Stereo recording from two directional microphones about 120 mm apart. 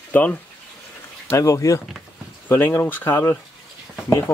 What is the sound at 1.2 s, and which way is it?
Speech, 25° left (ahead or behind).